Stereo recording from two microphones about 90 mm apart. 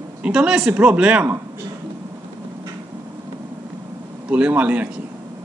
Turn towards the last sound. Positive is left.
turn(degrees=-15)  # may be behind; listen again after turning